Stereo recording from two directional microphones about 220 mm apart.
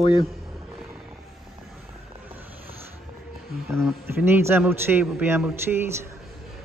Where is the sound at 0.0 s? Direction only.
20° left (ahead or behind).